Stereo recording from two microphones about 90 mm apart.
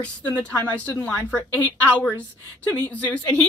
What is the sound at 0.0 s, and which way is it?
A woman's voice, 15° left (ahead or behind).